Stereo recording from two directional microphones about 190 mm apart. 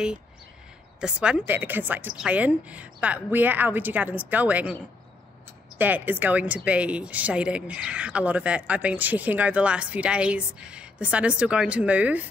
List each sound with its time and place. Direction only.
1.0 s speech: 5° right (ahead or behind)
5.8 s speech: 10° right (ahead or behind)